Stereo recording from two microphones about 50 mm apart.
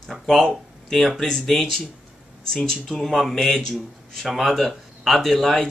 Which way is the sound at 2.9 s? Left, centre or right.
Centre.